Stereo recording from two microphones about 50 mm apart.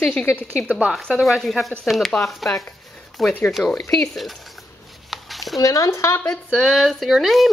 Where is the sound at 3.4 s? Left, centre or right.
Centre.